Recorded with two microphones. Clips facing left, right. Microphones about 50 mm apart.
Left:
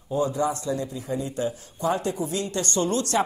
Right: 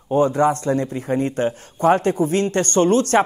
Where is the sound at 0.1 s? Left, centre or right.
Right.